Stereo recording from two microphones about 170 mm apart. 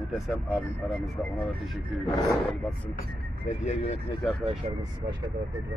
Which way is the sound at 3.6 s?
40° left (ahead or behind).